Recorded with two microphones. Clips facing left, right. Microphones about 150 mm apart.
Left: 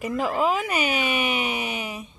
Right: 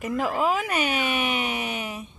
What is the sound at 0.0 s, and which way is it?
Speech, centre (ahead or behind).